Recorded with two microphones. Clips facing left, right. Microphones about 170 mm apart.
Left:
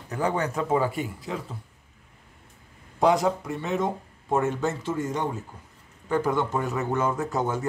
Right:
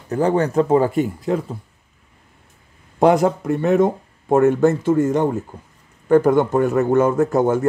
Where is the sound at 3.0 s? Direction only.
55° right (ahead or behind).